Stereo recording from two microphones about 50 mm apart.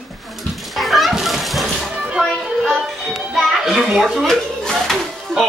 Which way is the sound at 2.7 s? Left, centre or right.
Centre.